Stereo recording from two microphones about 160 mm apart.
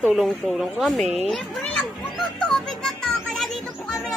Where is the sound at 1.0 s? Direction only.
45° right (ahead or behind).